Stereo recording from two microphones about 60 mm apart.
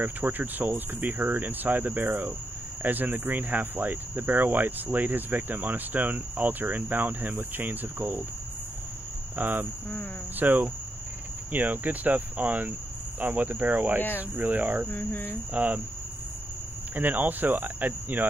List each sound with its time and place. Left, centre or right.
0.0 s hum: right
9.4 s hum: right
11.5 s cricket: right
15.5 s hum: right
16.9 s hum: right